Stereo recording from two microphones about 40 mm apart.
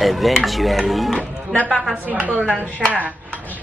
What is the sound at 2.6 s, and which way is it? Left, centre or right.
Speech, left.